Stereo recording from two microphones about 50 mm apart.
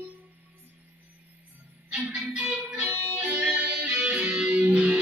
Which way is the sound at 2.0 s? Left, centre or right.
Right.